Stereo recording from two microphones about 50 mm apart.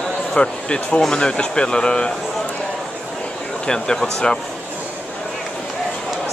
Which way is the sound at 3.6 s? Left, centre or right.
Centre.